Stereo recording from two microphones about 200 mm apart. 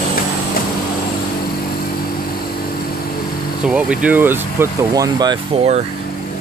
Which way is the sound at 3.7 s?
5° right (ahead or behind).